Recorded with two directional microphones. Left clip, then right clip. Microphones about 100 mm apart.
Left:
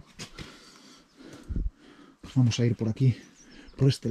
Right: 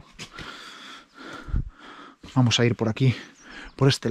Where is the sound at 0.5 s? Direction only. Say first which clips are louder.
Right 11 dB; 20° left (ahead or behind).